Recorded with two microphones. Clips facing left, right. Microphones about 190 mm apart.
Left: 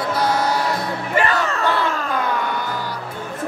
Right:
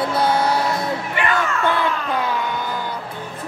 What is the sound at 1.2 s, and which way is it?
Crowd, 35° left (ahead or behind).